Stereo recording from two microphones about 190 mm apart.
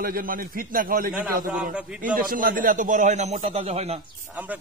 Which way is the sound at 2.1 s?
45° right (ahead or behind).